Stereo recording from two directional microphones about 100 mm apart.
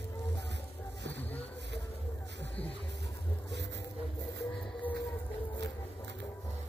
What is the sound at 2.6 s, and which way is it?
Music, 15° left (ahead or behind).